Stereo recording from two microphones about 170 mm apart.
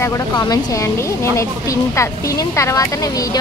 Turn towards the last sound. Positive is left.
turn(degrees=20)  # may be behind; listen again after turning